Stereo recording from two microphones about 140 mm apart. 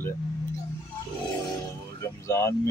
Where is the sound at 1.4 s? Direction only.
25° left (ahead or behind).